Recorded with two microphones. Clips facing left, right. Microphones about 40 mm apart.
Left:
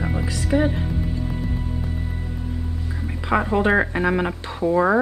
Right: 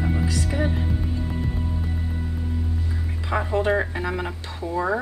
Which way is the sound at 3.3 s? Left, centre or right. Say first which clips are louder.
Left 4 dB; left.